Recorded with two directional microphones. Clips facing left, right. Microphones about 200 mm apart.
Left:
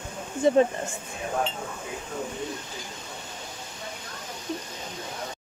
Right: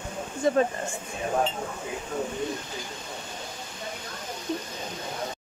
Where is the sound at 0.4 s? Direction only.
25° left (ahead or behind).